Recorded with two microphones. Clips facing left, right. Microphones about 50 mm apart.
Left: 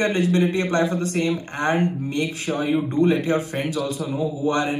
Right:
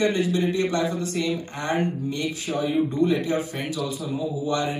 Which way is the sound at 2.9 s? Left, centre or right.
Left.